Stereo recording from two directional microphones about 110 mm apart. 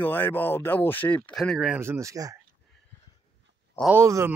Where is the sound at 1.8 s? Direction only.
25° right (ahead or behind).